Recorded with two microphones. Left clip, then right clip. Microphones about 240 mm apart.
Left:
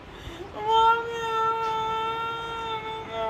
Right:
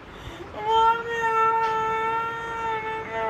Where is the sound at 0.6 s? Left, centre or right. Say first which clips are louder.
Even; centre.